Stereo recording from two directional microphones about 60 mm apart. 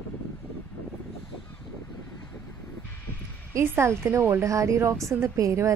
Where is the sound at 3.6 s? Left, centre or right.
Right.